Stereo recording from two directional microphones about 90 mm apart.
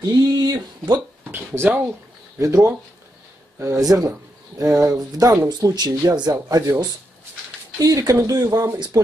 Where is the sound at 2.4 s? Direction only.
40° right (ahead or behind).